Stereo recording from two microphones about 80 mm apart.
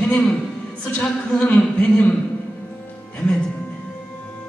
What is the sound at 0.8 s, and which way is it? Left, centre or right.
Speech, centre.